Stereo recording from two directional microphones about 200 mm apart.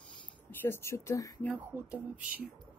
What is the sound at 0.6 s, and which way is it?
Speech, 10° left (ahead or behind).